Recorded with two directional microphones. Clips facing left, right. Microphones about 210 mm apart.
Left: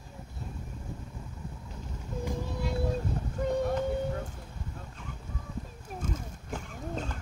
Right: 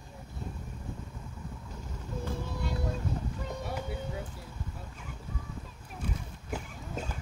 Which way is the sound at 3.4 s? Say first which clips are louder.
Left 9 dB; 50° left (ahead or behind).